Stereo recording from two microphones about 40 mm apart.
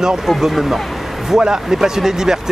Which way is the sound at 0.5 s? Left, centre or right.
Centre.